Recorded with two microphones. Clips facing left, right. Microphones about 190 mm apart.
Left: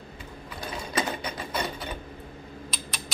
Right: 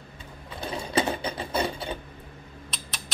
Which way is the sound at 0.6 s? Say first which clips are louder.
Right 4 dB; 30° right (ahead or behind).